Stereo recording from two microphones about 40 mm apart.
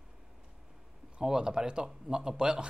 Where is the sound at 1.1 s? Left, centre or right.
Centre.